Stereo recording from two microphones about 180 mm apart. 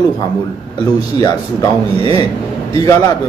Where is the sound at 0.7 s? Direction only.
20° left (ahead or behind).